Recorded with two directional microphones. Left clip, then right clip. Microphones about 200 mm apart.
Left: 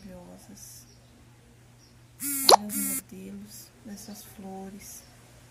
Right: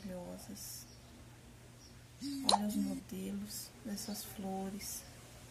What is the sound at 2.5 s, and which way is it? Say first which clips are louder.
Plop: left 15 dB; 40° left (ahead or behind).